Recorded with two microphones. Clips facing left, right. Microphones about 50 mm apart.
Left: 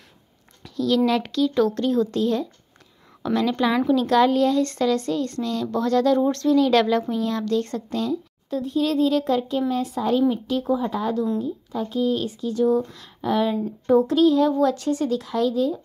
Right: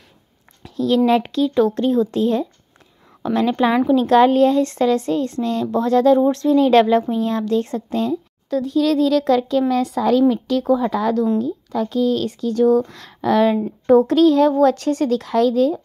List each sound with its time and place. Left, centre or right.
0.7 s speech: right
3.3 s speech: right
6.1 s speech: centre
6.5 s speech: right
8.5 s speech: right
13.8 s speech: right
14.6 s speech: right